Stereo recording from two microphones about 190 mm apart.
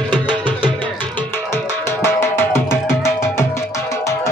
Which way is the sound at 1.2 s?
10° left (ahead or behind).